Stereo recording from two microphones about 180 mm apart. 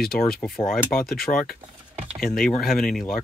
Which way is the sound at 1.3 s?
30° left (ahead or behind).